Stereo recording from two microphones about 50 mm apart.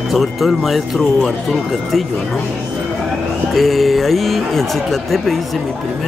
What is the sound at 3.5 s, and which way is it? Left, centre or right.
Speech, centre.